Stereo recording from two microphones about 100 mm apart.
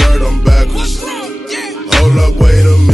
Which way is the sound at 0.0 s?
Centre (ahead or behind).